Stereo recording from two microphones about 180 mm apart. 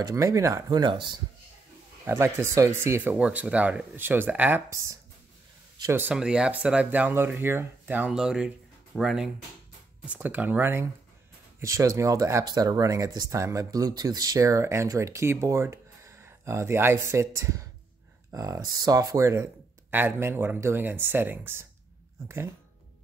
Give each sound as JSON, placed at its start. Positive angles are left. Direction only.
{"t": 0.0, "sound": "speech", "side_deg": -20}